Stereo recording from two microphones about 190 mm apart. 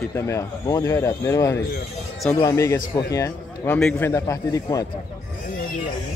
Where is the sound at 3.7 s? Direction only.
5° left (ahead or behind).